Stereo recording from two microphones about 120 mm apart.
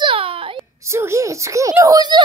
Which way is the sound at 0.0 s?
50° right (ahead or behind).